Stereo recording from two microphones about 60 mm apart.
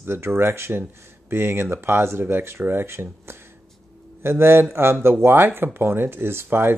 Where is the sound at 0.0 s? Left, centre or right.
Right.